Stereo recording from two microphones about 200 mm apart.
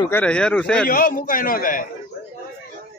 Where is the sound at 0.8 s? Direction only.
45° left (ahead or behind).